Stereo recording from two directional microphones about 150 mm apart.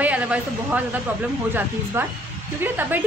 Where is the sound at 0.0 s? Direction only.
10° right (ahead or behind).